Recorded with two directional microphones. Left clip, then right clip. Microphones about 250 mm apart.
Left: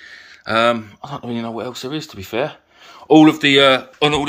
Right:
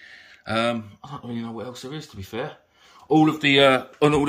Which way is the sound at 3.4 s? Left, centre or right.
Centre.